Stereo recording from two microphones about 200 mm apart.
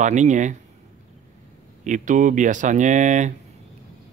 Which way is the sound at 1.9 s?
40° right (ahead or behind).